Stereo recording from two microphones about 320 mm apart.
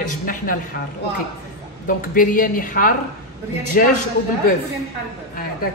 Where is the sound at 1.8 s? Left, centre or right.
Left.